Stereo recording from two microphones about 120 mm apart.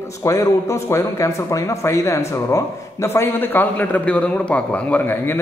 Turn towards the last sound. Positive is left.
turn(degrees=20)  # may be behind; listen again after turning